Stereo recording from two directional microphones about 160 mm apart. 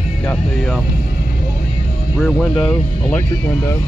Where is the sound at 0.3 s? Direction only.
5° left (ahead or behind).